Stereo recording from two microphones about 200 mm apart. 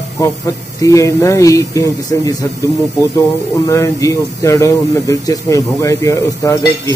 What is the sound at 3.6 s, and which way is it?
Speech, 15° left (ahead or behind).